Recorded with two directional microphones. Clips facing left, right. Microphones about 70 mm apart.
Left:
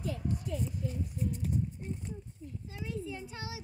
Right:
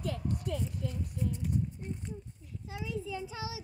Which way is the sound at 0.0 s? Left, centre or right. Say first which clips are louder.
Right 1 dB; right.